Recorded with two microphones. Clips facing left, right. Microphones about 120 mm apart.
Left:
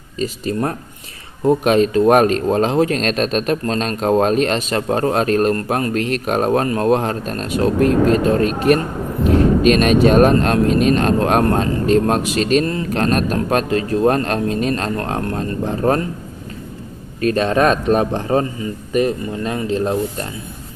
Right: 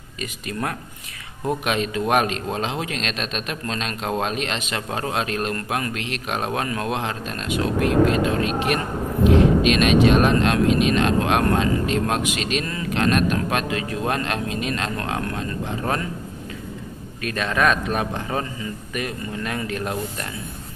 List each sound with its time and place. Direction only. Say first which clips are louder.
0.2 s speech: left 8 dB; 35° left (ahead or behind)
17.2 s speech: left 7 dB; 35° left (ahead or behind)